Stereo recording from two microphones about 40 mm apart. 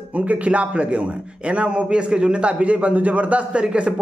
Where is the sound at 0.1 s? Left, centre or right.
Right.